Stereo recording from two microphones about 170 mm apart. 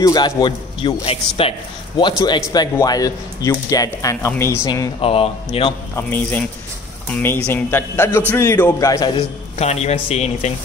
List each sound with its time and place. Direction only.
0.0 s speech: 25° left (ahead or behind)
5.0 s speech: 35° left (ahead or behind)
5.9 s speech: 10° left (ahead or behind)
9.6 s speech: 40° left (ahead or behind)